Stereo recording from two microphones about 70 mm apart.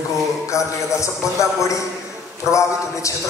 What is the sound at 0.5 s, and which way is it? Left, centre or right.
A man's voice, left.